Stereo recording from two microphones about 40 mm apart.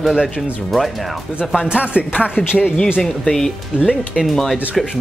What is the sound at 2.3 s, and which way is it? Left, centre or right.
Speech, centre.